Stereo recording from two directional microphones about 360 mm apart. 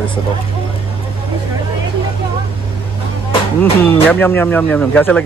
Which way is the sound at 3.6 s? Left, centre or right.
Centre.